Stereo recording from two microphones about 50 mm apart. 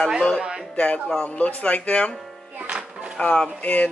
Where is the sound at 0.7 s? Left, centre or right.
Left.